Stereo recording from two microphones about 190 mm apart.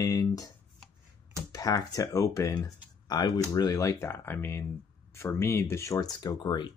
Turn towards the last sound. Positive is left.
turn(degrees=25)  # may be behind; listen again after turning